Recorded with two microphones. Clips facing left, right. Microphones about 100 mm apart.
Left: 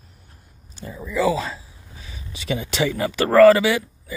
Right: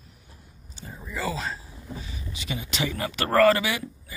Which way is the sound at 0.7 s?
80° left.